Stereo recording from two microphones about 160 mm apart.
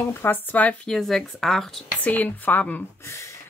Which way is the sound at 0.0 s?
15° left (ahead or behind).